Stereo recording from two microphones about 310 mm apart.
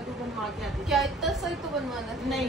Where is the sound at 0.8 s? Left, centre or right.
Centre.